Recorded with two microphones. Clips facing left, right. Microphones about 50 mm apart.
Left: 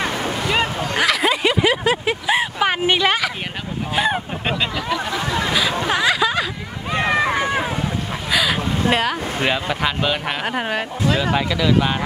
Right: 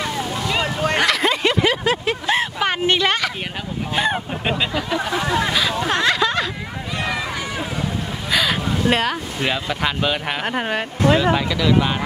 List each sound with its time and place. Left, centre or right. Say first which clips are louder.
0.0 s boat: left 2 dB; left
0.9 s vehicle: left 2 dB; centre
3.9 s speech: left 1 dB; centre
4.9 s a sound: right 3 dB; centre
5.5 s a sound: left 1 dB; centre
6.9 s run: left 7 dB; left
8.3 s a sound: even; centre
8.8 s speech: even; centre
9.4 s speech: left 2 dB; centre
9.8 s speech: even; centre